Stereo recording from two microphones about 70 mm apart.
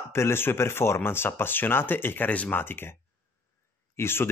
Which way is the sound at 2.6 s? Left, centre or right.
Left.